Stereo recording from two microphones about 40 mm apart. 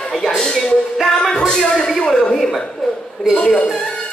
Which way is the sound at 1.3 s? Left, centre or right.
Centre.